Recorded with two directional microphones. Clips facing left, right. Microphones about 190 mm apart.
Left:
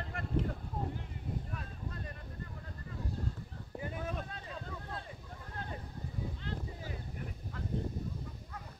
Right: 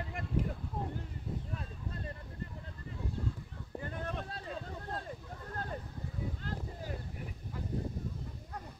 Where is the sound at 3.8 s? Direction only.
5° left (ahead or behind).